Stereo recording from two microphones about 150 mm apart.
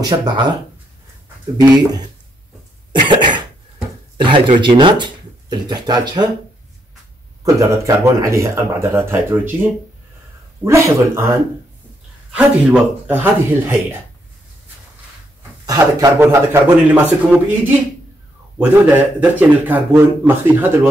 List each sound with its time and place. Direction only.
0.0 s speech: 25° right (ahead or behind)
1.6 s speech: 25° right (ahead or behind)
2.9 s cough: 30° right (ahead or behind)
4.2 s speech: 35° right (ahead or behind)
7.4 s speech: 20° right (ahead or behind)
10.6 s speech: 20° right (ahead or behind)
12.3 s speech: 5° right (ahead or behind)
15.6 s speech: 25° right (ahead or behind)
18.6 s speech: 10° right (ahead or behind)